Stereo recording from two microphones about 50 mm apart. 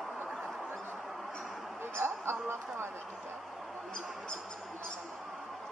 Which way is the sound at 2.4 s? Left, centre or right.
Right.